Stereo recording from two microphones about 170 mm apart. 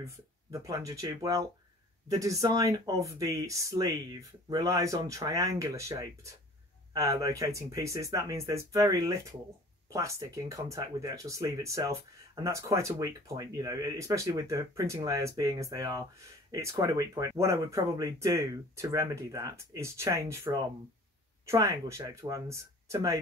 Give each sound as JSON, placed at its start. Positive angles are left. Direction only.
{"t": 0.0, "sound": "speech", "side_deg": -15}